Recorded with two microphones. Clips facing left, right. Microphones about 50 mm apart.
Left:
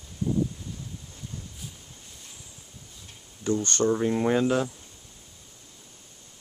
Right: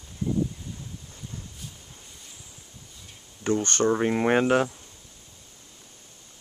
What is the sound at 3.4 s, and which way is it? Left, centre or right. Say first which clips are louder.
Speech: right 1 dB; right.